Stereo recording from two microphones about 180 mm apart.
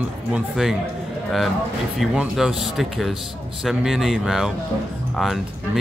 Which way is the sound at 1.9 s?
Centre (ahead or behind).